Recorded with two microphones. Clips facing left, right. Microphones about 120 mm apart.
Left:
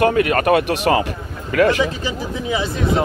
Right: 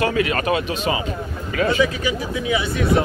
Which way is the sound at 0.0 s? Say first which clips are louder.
Left 5 dB; 50° left (ahead or behind).